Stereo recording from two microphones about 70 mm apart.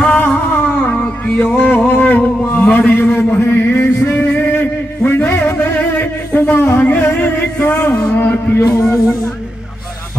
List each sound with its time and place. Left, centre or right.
0.2 s music: left
1.9 s a sound: left
7.0 s singing: left
7.6 s music: left
8.1 s a sound: left
8.8 s music: centre